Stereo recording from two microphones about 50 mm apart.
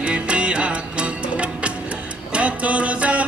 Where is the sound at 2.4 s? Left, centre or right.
Right.